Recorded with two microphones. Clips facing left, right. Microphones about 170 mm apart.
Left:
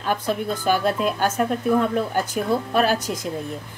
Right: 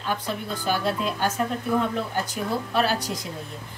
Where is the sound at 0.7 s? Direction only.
55° left (ahead or behind).